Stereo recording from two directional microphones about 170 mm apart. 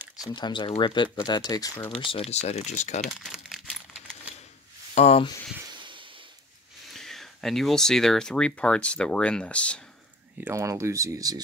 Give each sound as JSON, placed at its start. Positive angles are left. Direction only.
{"t": 0.3, "sound": "speech", "side_deg": 25}
{"t": 2.0, "sound": "speech", "side_deg": 35}
{"t": 3.2, "sound": "crumpling", "side_deg": 0}
{"t": 4.9, "sound": "speech", "side_deg": 40}
{"t": 6.9, "sound": "speech", "side_deg": 0}
{"t": 10.4, "sound": "speech", "side_deg": -15}